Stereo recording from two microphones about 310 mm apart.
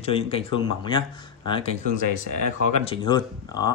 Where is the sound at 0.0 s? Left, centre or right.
Centre.